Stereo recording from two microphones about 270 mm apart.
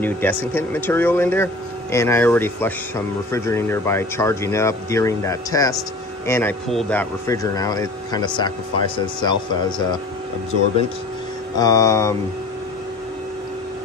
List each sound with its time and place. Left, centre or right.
0.0 s speech: centre
11.5 s speech: centre